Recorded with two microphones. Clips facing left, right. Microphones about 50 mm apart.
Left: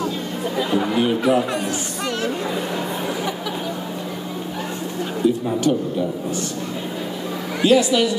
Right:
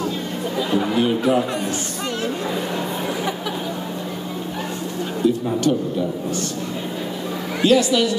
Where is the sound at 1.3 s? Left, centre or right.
Left.